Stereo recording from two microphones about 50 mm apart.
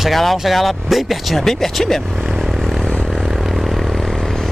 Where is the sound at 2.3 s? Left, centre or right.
Centre.